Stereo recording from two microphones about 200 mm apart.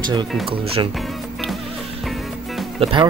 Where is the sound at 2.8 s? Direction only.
25° right (ahead or behind).